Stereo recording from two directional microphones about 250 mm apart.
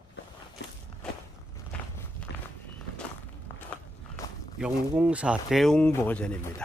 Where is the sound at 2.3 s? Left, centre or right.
Left.